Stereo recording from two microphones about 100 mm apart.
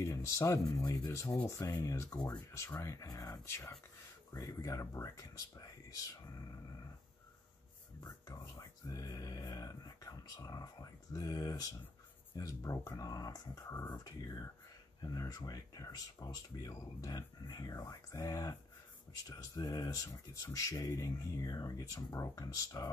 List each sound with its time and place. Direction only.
0.0 s speech: 30° left (ahead or behind)
8.0 s speech: 35° left (ahead or behind)